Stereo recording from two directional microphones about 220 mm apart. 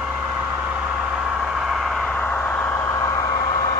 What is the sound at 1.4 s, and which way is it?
Vehicle, centre (ahead or behind).